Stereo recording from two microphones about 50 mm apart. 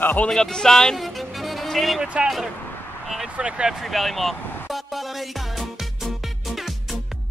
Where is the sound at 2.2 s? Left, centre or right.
Centre.